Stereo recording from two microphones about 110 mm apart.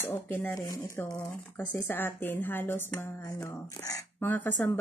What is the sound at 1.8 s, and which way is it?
Speech, 20° left (ahead or behind).